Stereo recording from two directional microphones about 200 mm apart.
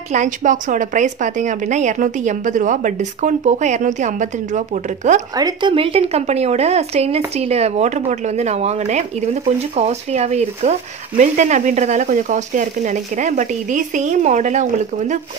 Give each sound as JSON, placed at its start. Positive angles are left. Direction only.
{"t": 0.1, "sound": "a woman's voice", "side_deg": -40}
{"t": 5.3, "sound": "a woman's voice", "side_deg": -20}